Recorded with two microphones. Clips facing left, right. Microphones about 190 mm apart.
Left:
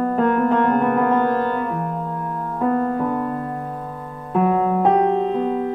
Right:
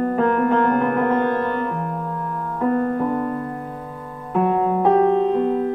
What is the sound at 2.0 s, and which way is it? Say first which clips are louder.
Music: even; 20° left (ahead or behind).